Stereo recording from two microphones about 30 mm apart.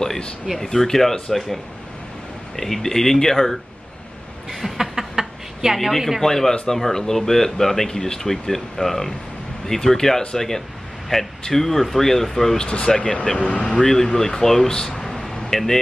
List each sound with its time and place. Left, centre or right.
0.6 s speech: centre
2.5 s speech: centre
4.5 s a sound: centre
5.8 s speech: centre
6.2 s speech: centre
12.8 s speech: left
13.4 s speech: left
13.7 s speech: centre
15.0 s a sound: centre
15.5 s speech: centre